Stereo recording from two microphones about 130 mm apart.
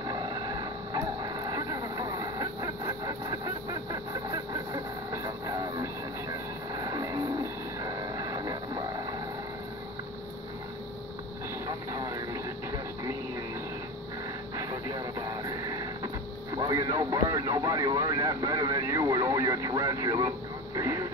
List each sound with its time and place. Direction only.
0.1 s vehicle: 30° right (ahead or behind)
6.7 s music: 30° right (ahead or behind)
11.9 s vehicle: 25° right (ahead or behind)
14.6 s radio: 30° right (ahead or behind)
16.5 s radio: 30° right (ahead or behind)